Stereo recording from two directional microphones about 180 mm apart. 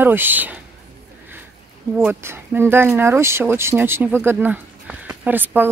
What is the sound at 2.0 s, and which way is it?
Speech, 10° right (ahead or behind).